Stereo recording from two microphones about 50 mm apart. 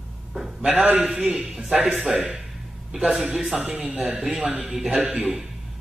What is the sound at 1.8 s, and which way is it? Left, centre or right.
Speech, right.